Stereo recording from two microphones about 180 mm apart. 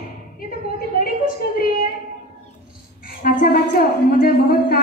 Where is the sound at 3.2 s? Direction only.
55° left (ahead or behind).